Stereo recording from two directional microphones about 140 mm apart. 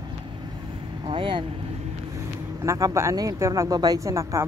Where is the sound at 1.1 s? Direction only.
35° right (ahead or behind).